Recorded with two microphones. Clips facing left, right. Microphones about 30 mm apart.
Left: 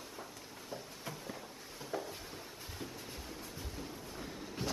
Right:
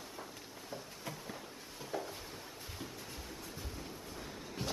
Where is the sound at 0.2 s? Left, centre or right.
Centre.